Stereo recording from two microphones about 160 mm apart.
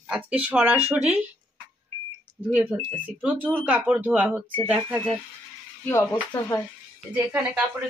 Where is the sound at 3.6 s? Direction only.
5° right (ahead or behind).